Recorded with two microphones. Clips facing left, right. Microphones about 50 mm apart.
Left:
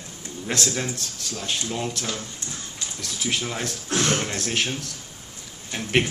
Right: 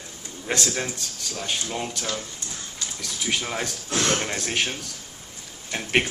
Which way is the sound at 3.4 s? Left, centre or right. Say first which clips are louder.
Even; centre.